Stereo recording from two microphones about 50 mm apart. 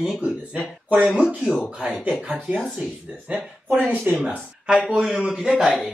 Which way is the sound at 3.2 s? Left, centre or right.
Right.